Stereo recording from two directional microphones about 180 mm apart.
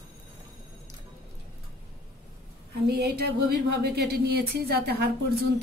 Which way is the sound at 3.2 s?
60° right (ahead or behind).